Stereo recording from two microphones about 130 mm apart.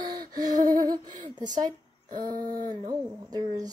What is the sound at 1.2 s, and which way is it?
Speech, 30° right (ahead or behind).